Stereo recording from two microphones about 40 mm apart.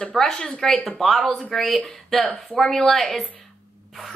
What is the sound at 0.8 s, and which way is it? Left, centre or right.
A woman's voice, centre.